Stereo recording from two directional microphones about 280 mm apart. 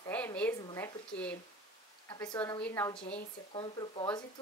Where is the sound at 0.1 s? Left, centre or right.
Centre.